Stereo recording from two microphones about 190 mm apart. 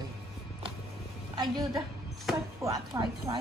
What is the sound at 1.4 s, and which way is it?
A woman's voice, 20° right (ahead or behind).